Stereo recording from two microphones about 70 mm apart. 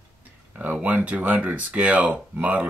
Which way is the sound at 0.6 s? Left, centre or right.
Right.